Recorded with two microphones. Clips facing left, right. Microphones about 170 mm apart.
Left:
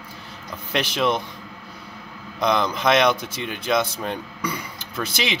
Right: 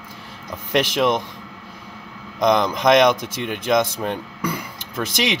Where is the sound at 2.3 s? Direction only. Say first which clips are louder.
Right 4 dB; 15° right (ahead or behind).